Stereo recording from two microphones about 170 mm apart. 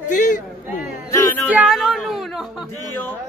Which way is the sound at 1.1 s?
15° left (ahead or behind).